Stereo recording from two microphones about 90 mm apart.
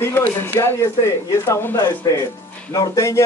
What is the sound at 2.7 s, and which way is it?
Speech, 35° left (ahead or behind).